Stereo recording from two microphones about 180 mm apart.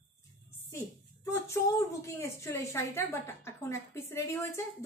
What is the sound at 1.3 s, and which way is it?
A woman's voice, 15° left (ahead or behind).